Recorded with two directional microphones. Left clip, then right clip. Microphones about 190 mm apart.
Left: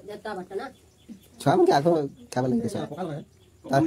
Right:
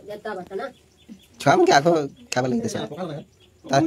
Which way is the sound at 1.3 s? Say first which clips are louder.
Right 4 dB; centre (ahead or behind).